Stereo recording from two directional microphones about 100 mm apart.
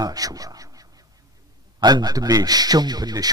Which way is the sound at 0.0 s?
40° right (ahead or behind).